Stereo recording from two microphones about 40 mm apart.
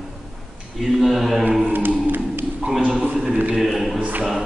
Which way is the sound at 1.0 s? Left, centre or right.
Centre.